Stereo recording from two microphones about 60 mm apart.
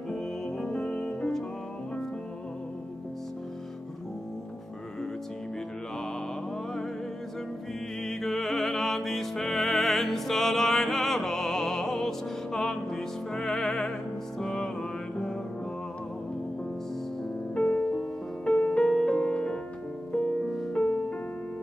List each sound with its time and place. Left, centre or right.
0.1 s music: centre
8.0 s music: centre
14.4 s mantra: centre
17.6 s music: left
20.7 s music: left